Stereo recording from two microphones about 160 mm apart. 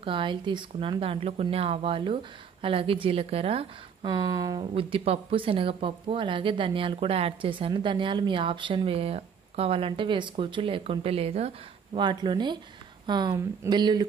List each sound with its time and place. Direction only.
0.0 s speech: 30° right (ahead or behind)
12.0 s speech: 30° right (ahead or behind)